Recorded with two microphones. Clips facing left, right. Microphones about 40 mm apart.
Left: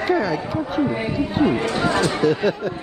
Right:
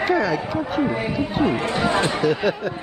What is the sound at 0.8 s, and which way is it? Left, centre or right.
Speech, centre.